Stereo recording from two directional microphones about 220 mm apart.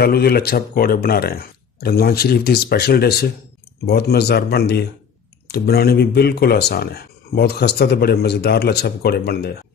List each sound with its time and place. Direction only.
0.0 s speech: 45° left (ahead or behind)